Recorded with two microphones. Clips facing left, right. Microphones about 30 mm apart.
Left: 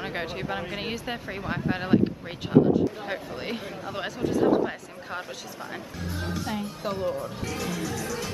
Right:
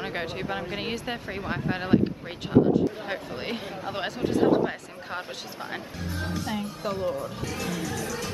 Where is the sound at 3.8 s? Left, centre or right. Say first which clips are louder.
Right 1 dB; right.